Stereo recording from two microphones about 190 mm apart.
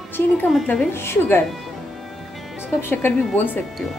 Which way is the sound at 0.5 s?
5° left (ahead or behind).